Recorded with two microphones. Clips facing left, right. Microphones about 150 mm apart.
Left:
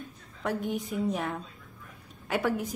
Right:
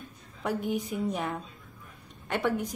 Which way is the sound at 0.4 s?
Centre (ahead or behind).